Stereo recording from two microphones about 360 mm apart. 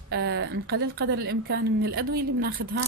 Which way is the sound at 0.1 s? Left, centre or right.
Right.